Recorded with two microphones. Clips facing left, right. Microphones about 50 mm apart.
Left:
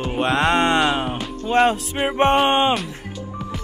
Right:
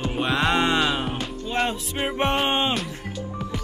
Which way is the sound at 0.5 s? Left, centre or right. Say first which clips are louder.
Left 3 dB; left.